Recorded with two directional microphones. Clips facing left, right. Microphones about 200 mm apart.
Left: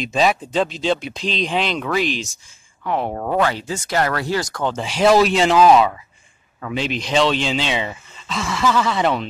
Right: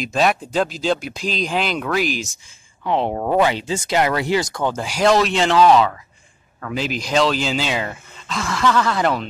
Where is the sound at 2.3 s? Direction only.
25° right (ahead or behind).